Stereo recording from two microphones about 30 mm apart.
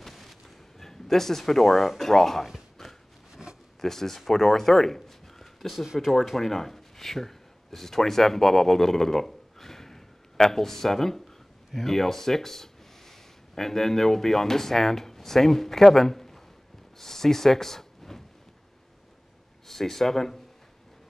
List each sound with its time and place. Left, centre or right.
0.0 s a sound: centre
2.0 s speech: centre
2.8 s a sound: centre
3.4 s zipper: right
3.8 s speech: centre
19.7 s speech: centre